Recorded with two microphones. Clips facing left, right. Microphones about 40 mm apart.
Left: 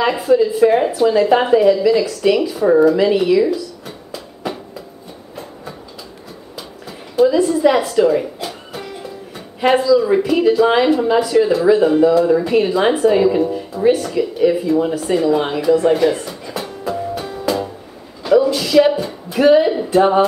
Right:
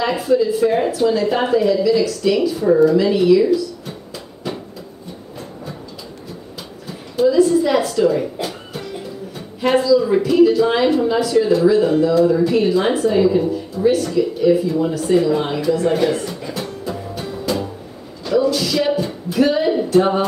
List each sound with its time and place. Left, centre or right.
0.1 s speech: centre
3.0 s a sound: centre
7.4 s a woman's voice: centre
8.4 s music: centre
9.7 s speech: centre
14.1 s a sound: centre
19.4 s speech: centre